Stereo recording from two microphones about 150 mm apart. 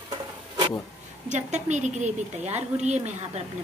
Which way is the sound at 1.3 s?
50° right (ahead or behind).